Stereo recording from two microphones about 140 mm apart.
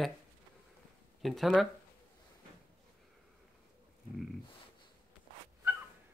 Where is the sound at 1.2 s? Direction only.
Centre (ahead or behind).